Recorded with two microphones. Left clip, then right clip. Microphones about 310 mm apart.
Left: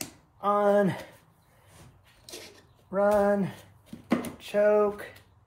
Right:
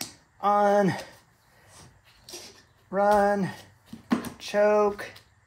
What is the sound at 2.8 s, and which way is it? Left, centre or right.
Speech, right.